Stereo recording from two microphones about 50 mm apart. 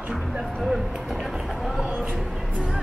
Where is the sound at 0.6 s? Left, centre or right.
Centre.